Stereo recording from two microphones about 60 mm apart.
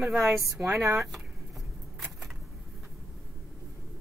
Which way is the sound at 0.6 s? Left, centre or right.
Right.